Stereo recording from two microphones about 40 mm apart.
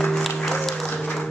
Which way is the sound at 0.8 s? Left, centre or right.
Left.